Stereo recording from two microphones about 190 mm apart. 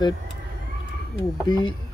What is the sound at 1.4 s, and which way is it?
Speech, 25° left (ahead or behind).